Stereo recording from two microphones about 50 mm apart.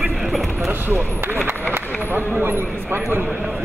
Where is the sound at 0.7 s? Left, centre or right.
Right.